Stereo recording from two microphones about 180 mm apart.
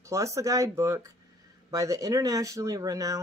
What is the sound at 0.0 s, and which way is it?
Speech, 15° right (ahead or behind).